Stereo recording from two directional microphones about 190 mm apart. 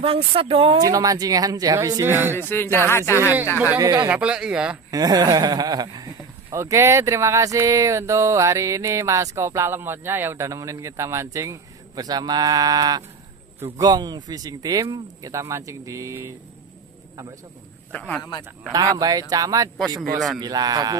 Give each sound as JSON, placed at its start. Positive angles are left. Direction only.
{"t": 0.0, "sound": "speech", "side_deg": -30}
{"t": 0.8, "sound": "speech", "side_deg": -20}
{"t": 2.5, "sound": "speech", "side_deg": 10}
{"t": 3.7, "sound": "speech", "side_deg": -20}
{"t": 4.1, "sound": "speech", "side_deg": -5}
{"t": 4.9, "sound": "speech", "side_deg": -20}
{"t": 17.9, "sound": "speech", "side_deg": 5}
{"t": 18.7, "sound": "speech", "side_deg": -20}
{"t": 20.0, "sound": "speech", "side_deg": 0}
{"t": 20.3, "sound": "speech", "side_deg": -20}